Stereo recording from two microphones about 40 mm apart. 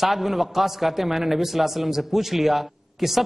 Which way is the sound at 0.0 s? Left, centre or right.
Centre.